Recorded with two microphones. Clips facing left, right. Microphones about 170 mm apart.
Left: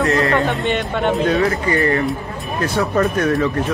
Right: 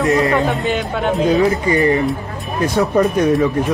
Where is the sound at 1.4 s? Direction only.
15° right (ahead or behind).